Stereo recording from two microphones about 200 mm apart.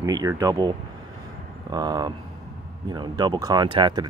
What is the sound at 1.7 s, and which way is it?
Speech, 20° right (ahead or behind).